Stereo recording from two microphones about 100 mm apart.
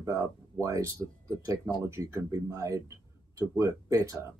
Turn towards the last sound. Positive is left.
turn(degrees=-35)  # may be behind; listen again after turning